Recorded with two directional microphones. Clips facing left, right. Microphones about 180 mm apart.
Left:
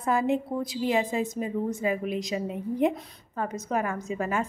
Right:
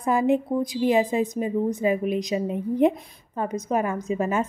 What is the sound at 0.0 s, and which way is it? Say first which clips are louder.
A woman's voice: right 4 dB; 15° right (ahead or behind).